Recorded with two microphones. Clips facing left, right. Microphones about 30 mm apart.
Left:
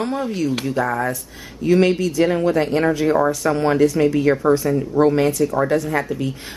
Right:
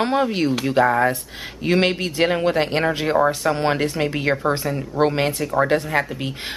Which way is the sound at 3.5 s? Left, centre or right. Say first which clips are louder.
Left 4 dB; right.